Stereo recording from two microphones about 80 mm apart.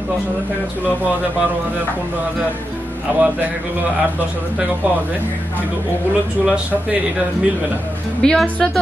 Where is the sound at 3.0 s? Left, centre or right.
Right.